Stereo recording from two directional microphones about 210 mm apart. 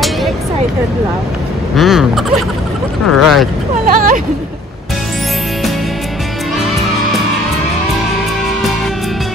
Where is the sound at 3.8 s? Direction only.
40° right (ahead or behind).